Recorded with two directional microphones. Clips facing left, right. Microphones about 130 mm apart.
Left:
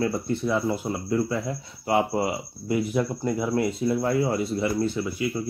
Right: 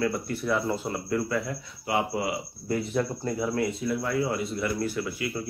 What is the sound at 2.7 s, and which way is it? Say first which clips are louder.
Speech: left 3 dB; 10° left (ahead or behind).